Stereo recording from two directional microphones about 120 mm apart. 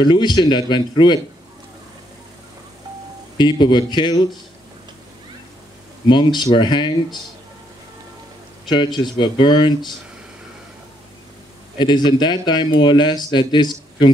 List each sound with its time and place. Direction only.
0.0 s speech: 35° left (ahead or behind)
3.3 s speech: 40° left (ahead or behind)
6.0 s speech: 40° left (ahead or behind)
8.6 s speech: 40° left (ahead or behind)
11.8 s speech: 40° left (ahead or behind)